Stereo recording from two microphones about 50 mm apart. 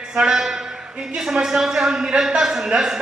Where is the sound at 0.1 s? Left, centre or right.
Centre.